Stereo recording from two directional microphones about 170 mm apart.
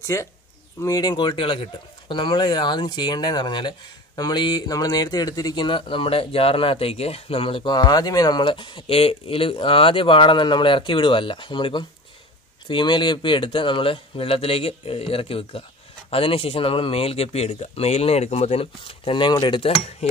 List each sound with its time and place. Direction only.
0.0 s speech: 15° left (ahead or behind); by 20.1 s 30° left (ahead or behind)